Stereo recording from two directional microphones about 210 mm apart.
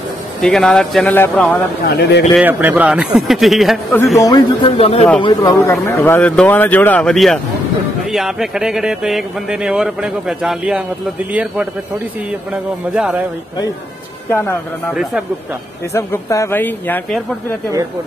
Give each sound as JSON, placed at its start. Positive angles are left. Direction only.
{"t": 0.4, "sound": "speech", "side_deg": 5}
{"t": 2.0, "sound": "speech", "side_deg": 55}
{"t": 2.3, "sound": "speech", "side_deg": -5}
{"t": 4.2, "sound": "speech", "side_deg": 20}
{"t": 5.2, "sound": "speech", "side_deg": 20}
{"t": 12.9, "sound": "a man's voice", "side_deg": -5}
{"t": 14.3, "sound": "speech", "side_deg": 10}